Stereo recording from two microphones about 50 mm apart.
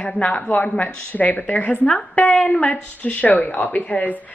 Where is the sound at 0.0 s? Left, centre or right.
Left.